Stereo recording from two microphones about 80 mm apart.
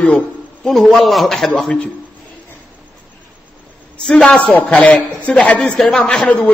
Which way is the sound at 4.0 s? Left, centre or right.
Centre.